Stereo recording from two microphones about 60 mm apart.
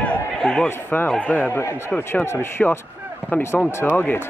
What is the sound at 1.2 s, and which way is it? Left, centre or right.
Speech, left.